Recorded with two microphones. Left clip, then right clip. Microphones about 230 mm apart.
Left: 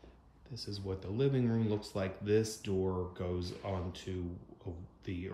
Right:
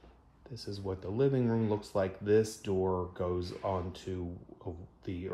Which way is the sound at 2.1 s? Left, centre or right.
Centre.